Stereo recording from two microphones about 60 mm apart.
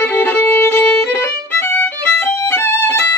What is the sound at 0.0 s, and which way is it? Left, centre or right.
Violin, left.